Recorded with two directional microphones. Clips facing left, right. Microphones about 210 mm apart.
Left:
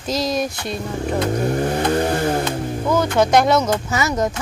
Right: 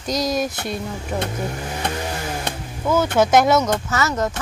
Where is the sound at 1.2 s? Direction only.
50° left (ahead or behind).